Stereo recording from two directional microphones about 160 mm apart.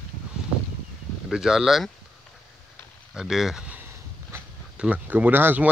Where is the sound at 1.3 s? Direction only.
5° right (ahead or behind).